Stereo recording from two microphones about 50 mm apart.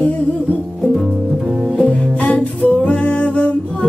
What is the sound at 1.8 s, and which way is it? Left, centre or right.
Music, left.